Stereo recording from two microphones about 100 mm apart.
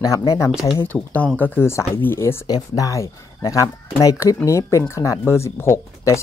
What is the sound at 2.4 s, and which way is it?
Speech, 35° left (ahead or behind).